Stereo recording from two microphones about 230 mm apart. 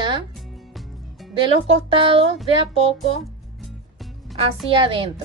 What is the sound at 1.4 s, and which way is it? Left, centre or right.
A woman's voice, right.